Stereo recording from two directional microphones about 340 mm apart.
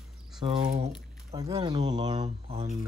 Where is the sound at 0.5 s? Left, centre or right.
Centre.